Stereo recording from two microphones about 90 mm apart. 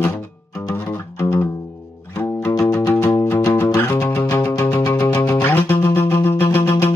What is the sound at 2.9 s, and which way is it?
Music, 30° left (ahead or behind).